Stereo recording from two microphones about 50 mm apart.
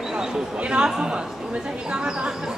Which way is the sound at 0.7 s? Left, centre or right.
Centre.